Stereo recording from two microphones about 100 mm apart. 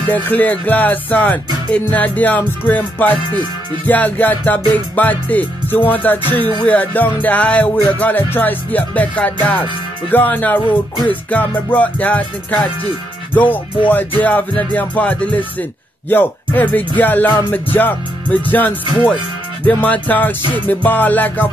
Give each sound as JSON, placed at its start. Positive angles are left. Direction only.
{"t": 0.1, "sound": "music", "side_deg": 15}
{"t": 16.1, "sound": "speech", "side_deg": 20}
{"t": 17.5, "sound": "music", "side_deg": 20}